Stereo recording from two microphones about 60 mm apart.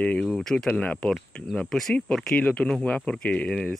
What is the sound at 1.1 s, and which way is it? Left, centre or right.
Speech, centre.